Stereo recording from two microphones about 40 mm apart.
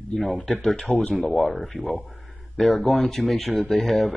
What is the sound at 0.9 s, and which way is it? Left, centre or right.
Speech, left.